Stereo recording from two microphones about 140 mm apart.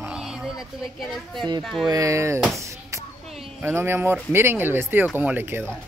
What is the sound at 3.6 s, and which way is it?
Speech, 15° right (ahead or behind).